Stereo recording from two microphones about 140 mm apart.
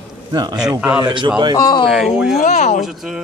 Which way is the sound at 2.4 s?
60° left (ahead or behind).